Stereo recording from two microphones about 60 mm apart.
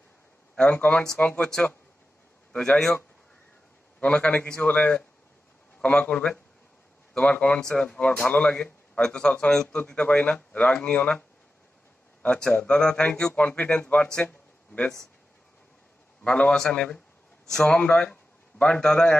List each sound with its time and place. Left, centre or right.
0.6 s speech: left
4.0 s speech: left
16.3 s speech: centre
18.0 s a sound: left
18.9 s speech: centre